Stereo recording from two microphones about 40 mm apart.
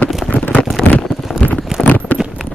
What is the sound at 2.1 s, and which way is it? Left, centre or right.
Keys jangling, left.